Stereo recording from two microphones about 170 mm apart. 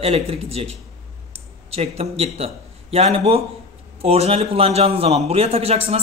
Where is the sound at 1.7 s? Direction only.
35° right (ahead or behind).